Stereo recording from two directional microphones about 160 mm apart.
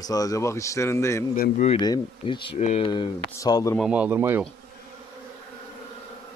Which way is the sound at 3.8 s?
10° right (ahead or behind).